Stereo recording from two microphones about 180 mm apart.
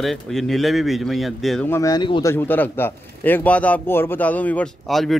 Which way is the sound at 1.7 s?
20° left (ahead or behind).